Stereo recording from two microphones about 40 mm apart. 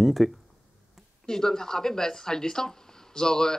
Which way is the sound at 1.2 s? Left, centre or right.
Centre.